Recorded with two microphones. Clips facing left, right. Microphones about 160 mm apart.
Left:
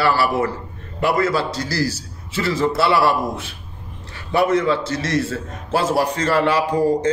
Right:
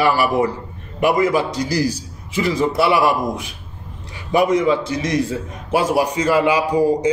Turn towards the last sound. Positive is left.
turn(degrees=-10)  # may be behind; listen again after turning